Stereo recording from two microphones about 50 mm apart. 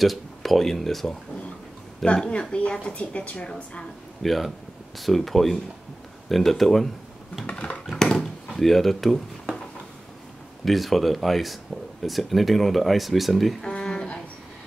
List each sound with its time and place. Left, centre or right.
0.0 s speech: centre
2.1 s a woman's voice: centre
4.2 s speech: centre
7.4 s a sound: left
7.8 s dog: centre
8.2 s speech: centre
10.6 s speech: centre
13.6 s a sound: centre